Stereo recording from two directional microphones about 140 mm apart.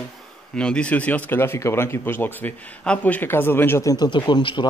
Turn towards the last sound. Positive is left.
turn(degrees=35)  # may be behind; listen again after turning